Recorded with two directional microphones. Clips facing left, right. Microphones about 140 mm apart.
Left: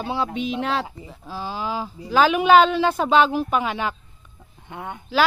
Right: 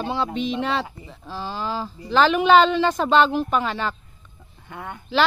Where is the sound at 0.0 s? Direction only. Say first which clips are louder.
Even; 10° left (ahead or behind).